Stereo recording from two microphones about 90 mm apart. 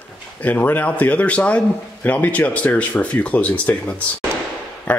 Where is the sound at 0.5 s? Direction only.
20° left (ahead or behind).